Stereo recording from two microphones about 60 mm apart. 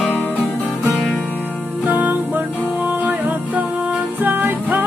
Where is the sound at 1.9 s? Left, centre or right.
Right.